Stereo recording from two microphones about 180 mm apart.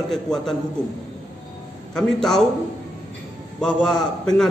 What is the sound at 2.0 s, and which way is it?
Speech, 5° left (ahead or behind).